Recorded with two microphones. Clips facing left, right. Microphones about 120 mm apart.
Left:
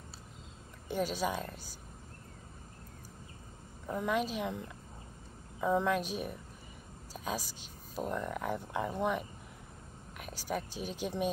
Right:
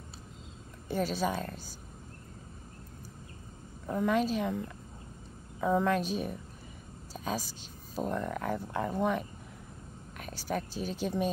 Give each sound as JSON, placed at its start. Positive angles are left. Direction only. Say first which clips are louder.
{"t": 0.8, "sound": "speech", "louder": "right 2 dB", "side_deg": 10}
{"t": 3.8, "sound": "speech", "louder": "right 4 dB", "side_deg": 5}
{"t": 5.6, "sound": "speech", "louder": "right 2 dB", "side_deg": 0}
{"t": 5.9, "sound": "a woman's voice", "louder": "right 3 dB", "side_deg": 10}
{"t": 10.1, "sound": "a woman's voice", "louder": "right 2 dB", "side_deg": 10}